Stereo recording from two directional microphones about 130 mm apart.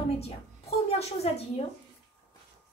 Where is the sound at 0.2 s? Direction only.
50° left (ahead or behind).